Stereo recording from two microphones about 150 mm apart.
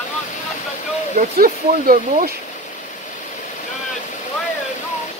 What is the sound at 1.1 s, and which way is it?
Speech, 70° right (ahead or behind).